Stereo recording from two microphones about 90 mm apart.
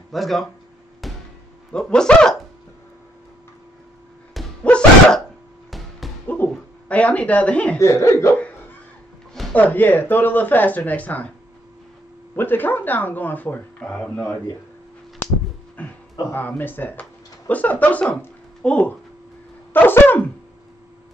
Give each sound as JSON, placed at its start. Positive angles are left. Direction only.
{"t": 0.1, "sound": "speech", "side_deg": 0}
{"t": 1.0, "sound": "a sound", "side_deg": 0}
{"t": 1.7, "sound": "speech", "side_deg": 10}
{"t": 4.6, "sound": "dog", "side_deg": 10}
{"t": 5.7, "sound": "basketball bounce", "side_deg": 0}
{"t": 6.2, "sound": "dog", "side_deg": 20}
{"t": 6.9, "sound": "speech", "side_deg": 15}
{"t": 7.8, "sound": "speech", "side_deg": 30}
{"t": 9.5, "sound": "speech", "side_deg": 20}
{"t": 12.4, "sound": "speech", "side_deg": 20}
{"t": 15.8, "sound": "speech", "side_deg": 20}
{"t": 19.7, "sound": "a sound", "side_deg": 20}